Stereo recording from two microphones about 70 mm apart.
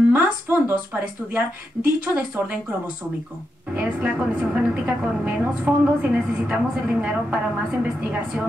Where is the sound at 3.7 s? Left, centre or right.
Right.